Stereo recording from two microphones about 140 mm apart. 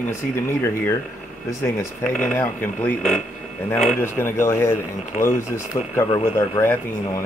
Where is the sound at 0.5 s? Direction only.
15° left (ahead or behind).